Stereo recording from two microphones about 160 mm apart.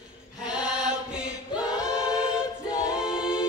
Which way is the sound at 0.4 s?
5° right (ahead or behind).